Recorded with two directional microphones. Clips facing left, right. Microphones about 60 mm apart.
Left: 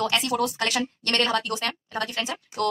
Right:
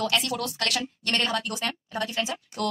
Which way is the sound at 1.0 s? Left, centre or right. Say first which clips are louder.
Left 2 dB; centre.